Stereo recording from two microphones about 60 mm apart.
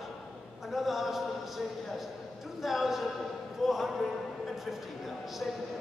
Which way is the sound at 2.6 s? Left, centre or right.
Centre.